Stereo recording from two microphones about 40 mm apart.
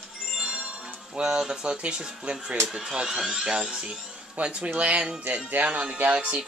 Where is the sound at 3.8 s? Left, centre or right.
Right.